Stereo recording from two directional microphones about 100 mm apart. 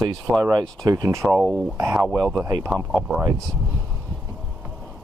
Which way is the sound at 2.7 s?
5° right (ahead or behind).